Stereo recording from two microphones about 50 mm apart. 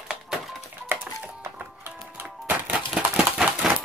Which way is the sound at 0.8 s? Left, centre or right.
Right.